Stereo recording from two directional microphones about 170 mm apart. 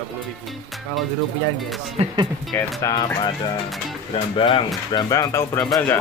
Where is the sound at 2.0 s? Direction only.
35° right (ahead or behind).